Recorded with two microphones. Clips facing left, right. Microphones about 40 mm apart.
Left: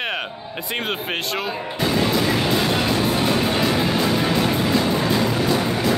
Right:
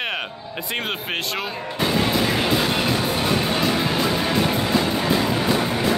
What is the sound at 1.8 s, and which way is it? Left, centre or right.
Music, centre.